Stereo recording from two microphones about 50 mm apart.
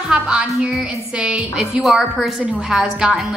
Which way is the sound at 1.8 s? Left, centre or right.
Centre.